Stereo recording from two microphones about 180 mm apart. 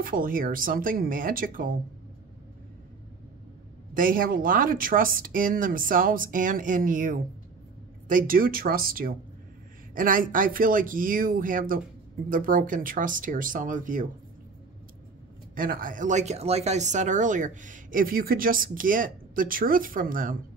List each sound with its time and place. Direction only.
0.0 s speech: 50° right (ahead or behind)
3.9 s speech: 50° right (ahead or behind)
15.5 s speech: 50° right (ahead or behind)